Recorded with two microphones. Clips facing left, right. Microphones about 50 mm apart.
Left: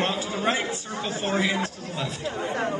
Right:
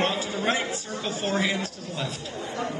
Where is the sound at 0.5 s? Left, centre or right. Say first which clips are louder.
Left 1 dB; left.